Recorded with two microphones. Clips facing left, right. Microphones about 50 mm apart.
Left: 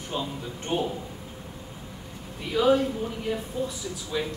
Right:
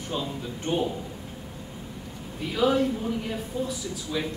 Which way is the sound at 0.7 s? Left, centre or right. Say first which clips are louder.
Even; centre.